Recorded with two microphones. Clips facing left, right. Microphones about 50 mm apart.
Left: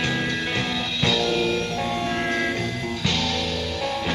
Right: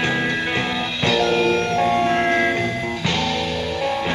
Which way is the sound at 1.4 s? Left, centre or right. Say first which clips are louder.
Right 6 dB; right.